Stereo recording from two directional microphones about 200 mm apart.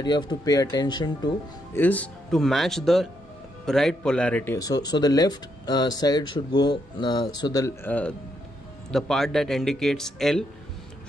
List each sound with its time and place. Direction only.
0.0 s speech: 20° left (ahead or behind)
1.8 s speech: 5° left (ahead or behind)
4.6 s speech: 20° left (ahead or behind); by 10.4 s centre (ahead or behind)